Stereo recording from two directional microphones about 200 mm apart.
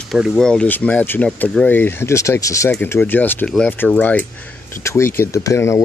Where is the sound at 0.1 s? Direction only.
Centre (ahead or behind).